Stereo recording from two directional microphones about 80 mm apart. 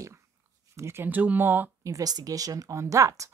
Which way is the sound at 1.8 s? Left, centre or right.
Right.